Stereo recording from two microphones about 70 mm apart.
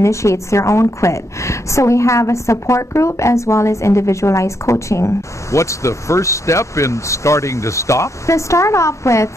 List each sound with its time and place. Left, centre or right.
0.0 s a woman's voice: left